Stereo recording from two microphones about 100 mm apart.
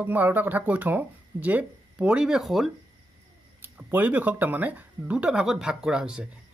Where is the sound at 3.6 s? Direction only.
20° right (ahead or behind).